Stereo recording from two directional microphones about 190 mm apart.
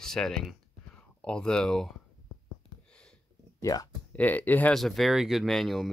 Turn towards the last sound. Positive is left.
turn(degrees=0)  # may be behind; listen again after turning